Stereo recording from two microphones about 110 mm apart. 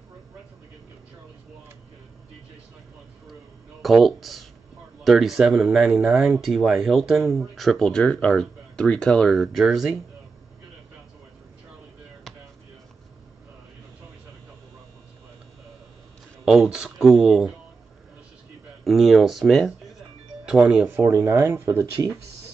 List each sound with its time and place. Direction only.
3.8 s speech: centre (ahead or behind)
16.4 s speech: 5° right (ahead or behind)
18.9 s speech: centre (ahead or behind)
20.9 s speech: 25° right (ahead or behind)